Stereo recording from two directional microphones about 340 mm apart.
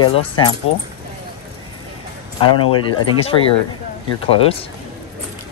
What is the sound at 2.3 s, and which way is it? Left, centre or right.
Speech, centre.